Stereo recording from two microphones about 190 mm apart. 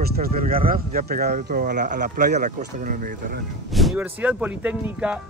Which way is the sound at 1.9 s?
40° right (ahead or behind).